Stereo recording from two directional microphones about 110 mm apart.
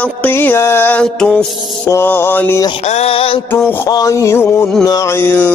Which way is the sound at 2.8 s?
70° left (ahead or behind).